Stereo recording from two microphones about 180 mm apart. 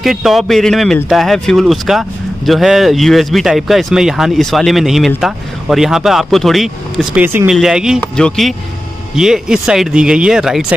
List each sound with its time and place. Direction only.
0.0 s speech: centre (ahead or behind)